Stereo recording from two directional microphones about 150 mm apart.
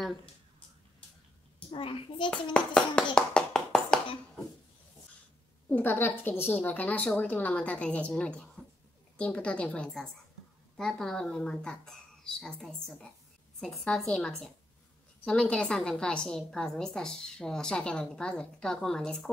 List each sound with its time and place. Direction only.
1.7 s a child's voice: 35° left (ahead or behind)
2.5 s a woman's voice: 5° left (ahead or behind)
3.2 s clapping: 5° left (ahead or behind)
5.7 s a woman's voice: 10° left (ahead or behind)